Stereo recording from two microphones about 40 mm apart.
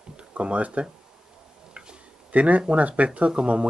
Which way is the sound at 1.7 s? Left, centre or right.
Right.